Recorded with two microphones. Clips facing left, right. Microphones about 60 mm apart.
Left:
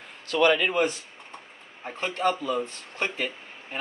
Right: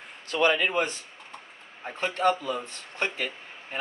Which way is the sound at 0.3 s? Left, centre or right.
Centre.